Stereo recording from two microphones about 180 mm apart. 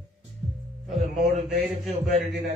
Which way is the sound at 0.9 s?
Centre (ahead or behind).